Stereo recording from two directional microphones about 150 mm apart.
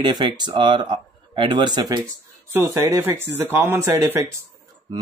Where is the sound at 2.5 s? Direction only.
20° right (ahead or behind).